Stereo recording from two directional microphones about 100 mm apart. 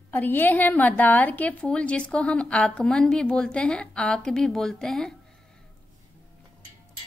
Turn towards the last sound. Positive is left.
turn(degrees=5)  # may be behind; listen again after turning